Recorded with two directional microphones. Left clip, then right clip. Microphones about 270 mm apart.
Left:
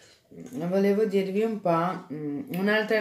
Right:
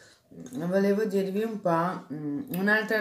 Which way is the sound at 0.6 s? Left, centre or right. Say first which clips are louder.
Left 2 dB; centre.